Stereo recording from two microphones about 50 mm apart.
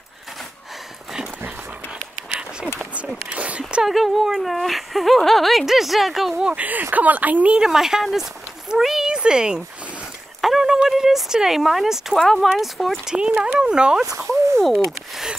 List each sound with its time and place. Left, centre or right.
3.3 s a sound: right
3.8 s speech: centre
6.6 s speech: right
7.5 s speech: centre
9.1 s a sound: centre
10.9 s speech: centre
12.2 s speech: centre
13.0 s speech: centre
14.1 s a sound: right